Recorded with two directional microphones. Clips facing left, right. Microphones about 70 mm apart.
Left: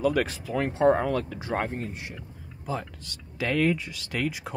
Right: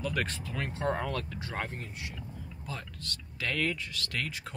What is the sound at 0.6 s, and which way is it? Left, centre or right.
Speech, left.